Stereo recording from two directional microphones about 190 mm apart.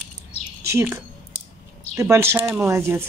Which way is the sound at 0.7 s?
15° right (ahead or behind).